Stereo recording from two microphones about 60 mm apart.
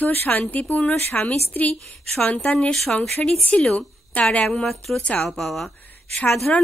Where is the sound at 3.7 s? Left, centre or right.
Left.